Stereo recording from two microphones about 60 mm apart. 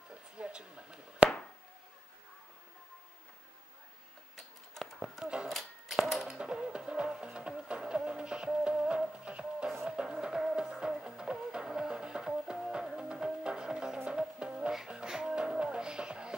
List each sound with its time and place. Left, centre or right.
0.4 s chop: centre
5.2 s a sound: centre
5.5 s typewriter: centre
5.9 s music: centre